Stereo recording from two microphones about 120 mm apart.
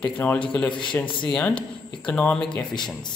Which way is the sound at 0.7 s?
40° left (ahead or behind).